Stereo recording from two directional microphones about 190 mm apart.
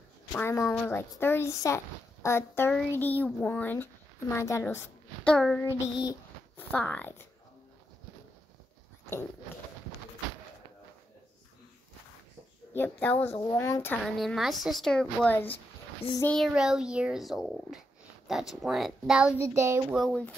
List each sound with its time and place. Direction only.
0.3 s speech: 10° left (ahead or behind)
12.7 s speech: 10° left (ahead or behind)
14.0 s a child's voice: centre (ahead or behind)
19.4 s child singing: 15° right (ahead or behind)
20.0 s a child's voice: 5° left (ahead or behind)